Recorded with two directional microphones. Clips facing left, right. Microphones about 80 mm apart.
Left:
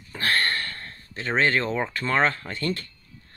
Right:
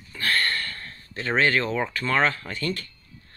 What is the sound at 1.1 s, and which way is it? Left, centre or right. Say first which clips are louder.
Speech: right 1 dB; centre.